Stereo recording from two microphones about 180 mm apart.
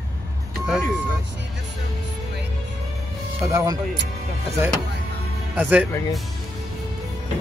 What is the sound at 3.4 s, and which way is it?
Speech, 20° right (ahead or behind).